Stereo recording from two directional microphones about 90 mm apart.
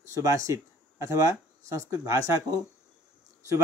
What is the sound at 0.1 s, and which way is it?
Speech, 35° right (ahead or behind).